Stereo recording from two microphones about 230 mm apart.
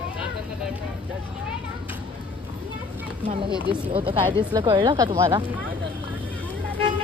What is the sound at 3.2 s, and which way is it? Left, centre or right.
Speech, right.